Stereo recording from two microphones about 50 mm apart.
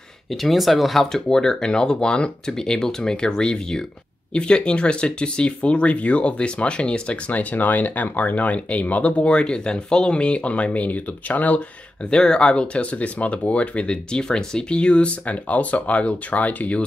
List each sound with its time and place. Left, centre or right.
0.3 s speech: centre; by 11.6 s left
12.1 s speech: centre